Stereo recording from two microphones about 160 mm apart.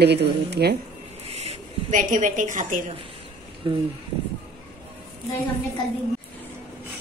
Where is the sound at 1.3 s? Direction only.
40° right (ahead or behind).